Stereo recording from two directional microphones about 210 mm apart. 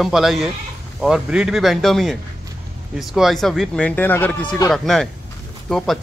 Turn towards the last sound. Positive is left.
turn(degrees=0)  # may be behind; listen again after turning